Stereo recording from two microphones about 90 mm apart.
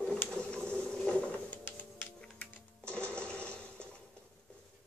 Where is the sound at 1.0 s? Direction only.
10° left (ahead or behind).